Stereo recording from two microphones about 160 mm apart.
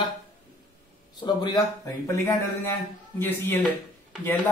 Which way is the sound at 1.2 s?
25° left (ahead or behind).